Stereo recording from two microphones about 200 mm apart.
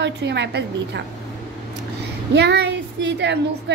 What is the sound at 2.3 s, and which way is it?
A woman's voice, 55° right (ahead or behind).